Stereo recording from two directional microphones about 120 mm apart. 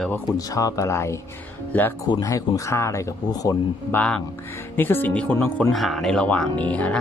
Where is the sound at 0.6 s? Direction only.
30° left (ahead or behind).